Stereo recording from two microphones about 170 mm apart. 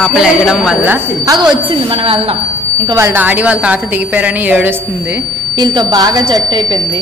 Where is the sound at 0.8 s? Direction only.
20° right (ahead or behind).